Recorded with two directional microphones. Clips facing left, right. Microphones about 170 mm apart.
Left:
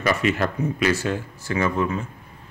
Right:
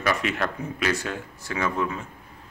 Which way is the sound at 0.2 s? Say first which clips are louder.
Left 5 dB; centre (ahead or behind).